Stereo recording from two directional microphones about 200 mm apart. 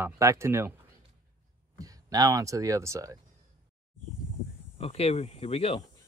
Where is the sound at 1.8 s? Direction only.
20° right (ahead or behind).